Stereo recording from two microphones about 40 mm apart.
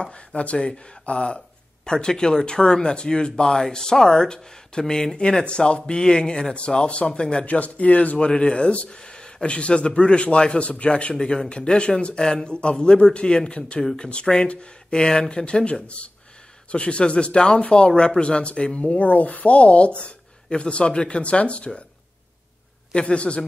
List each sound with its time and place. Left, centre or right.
0.0 s speech: left
1.9 s speech: centre
7.4 s speech: left
8.3 s speech: left
22.9 s speech: left